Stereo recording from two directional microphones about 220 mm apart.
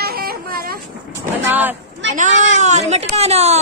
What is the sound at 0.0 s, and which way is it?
Vehicle, 45° right (ahead or behind).